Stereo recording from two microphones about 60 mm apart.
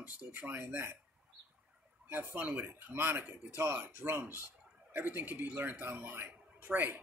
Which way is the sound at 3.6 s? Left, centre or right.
Right.